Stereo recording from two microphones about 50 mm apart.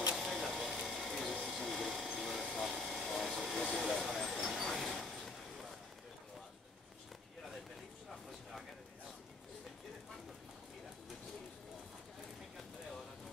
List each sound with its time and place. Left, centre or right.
0.2 s printer: centre
1.6 s ratchet: centre
2.1 s wood: centre
3.7 s vehicle: centre
4.4 s vehicle: centre
4.6 s vehicle: centre